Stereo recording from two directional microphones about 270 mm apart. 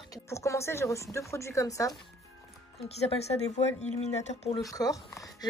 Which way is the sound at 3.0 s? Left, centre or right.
Left.